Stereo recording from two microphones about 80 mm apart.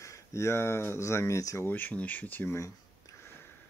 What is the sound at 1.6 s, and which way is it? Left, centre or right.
Speech, left.